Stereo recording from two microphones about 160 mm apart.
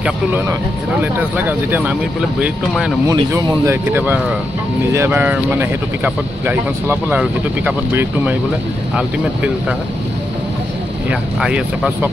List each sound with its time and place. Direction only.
1.0 s speech: 10° right (ahead or behind)
3.1 s speech: 20° right (ahead or behind)
11.1 s speech: 5° right (ahead or behind)